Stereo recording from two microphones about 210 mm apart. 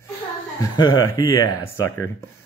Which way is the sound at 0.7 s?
20° left (ahead or behind).